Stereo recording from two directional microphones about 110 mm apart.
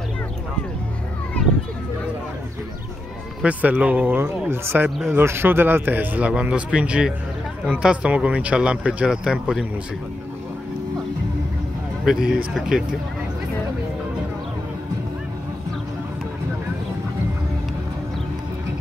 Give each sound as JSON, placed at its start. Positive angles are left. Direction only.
{"t": 3.4, "sound": "speech", "side_deg": -15}
{"t": 12.0, "sound": "speech", "side_deg": -5}